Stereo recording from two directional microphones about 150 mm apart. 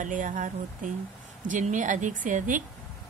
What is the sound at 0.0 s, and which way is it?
Speech, 60° right (ahead or behind).